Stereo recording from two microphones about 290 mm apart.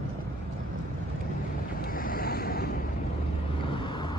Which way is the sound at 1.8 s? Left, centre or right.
Left.